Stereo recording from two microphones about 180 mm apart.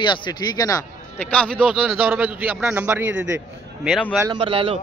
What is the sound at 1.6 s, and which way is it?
A man's voice, 10° right (ahead or behind).